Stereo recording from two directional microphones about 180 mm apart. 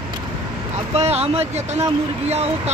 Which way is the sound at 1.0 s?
35° right (ahead or behind).